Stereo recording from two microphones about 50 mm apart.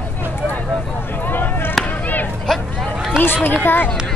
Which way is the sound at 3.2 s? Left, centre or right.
Left.